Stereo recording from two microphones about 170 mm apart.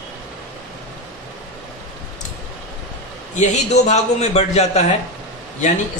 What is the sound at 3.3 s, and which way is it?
A man's voice, 45° left (ahead or behind).